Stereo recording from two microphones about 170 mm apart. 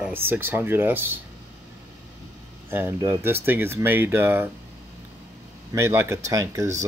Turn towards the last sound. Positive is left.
turn(degrees=-20)  # may be behind; listen again after turning